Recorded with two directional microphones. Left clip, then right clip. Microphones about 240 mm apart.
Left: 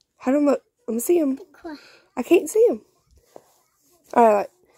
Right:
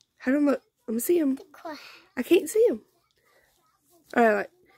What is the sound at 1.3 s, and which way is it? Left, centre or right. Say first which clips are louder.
Speech: left 1 dB; right.